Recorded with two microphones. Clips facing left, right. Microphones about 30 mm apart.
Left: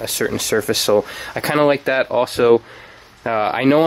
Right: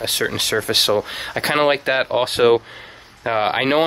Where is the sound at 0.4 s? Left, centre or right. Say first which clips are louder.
Right 1 dB; right.